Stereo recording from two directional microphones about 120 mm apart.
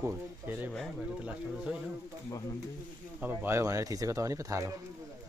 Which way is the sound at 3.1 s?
20° right (ahead or behind).